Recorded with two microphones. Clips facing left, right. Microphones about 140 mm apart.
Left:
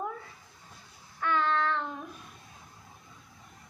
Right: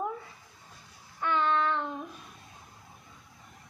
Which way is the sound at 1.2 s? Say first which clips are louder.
Right 1 dB; 15° right (ahead or behind).